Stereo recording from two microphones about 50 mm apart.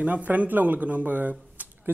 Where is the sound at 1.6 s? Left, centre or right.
Right.